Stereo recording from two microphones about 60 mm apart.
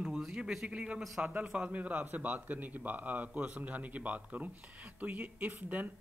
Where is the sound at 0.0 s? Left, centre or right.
Centre.